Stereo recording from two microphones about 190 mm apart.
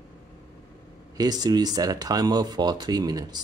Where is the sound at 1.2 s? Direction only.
20° right (ahead or behind).